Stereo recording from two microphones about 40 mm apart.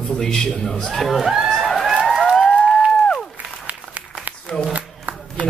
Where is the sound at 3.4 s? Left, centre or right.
Right.